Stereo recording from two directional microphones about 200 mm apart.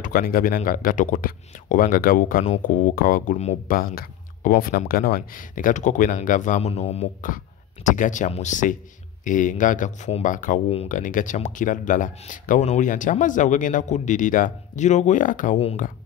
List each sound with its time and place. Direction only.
0.0 s speech: 45° left (ahead or behind)